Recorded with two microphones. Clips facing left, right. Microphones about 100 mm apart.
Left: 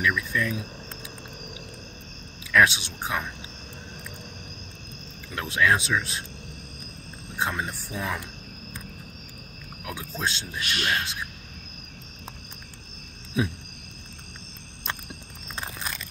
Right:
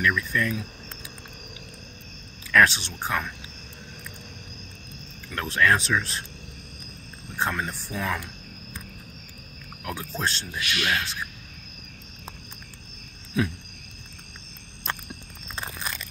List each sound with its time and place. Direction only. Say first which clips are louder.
0.0 s speech: right 1 dB; 10° left (ahead or behind)
2.5 s speech: right 1 dB; 5° left (ahead or behind)
5.3 s speech: right 1 dB; 10° left (ahead or behind)
7.3 s speech: right 1 dB; 10° left (ahead or behind)
9.8 s speech: right 1 dB; 5° left (ahead or behind)
10.6 s speech: right 1 dB; 40° left (ahead or behind)
13.4 s speech: right 1 dB; 15° left (ahead or behind)